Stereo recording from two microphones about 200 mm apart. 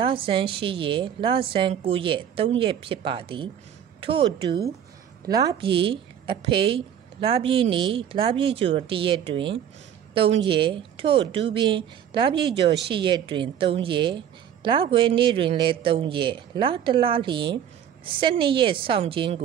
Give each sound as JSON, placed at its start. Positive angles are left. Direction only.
{"t": 0.0, "sound": "speech", "side_deg": -25}
{"t": 5.2, "sound": "a woman's voice", "side_deg": -20}
{"t": 12.4, "sound": "speech", "side_deg": -60}
{"t": 12.8, "sound": "speech", "side_deg": -25}